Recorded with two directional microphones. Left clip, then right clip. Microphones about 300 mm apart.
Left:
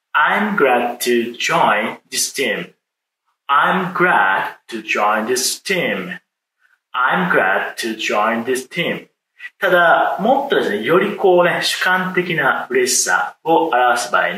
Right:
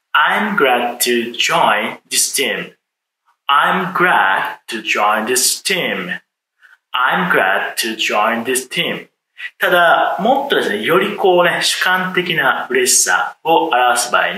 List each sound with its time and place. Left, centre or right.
0.1 s speech: centre